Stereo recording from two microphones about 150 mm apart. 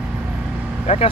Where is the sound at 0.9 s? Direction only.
45° left (ahead or behind).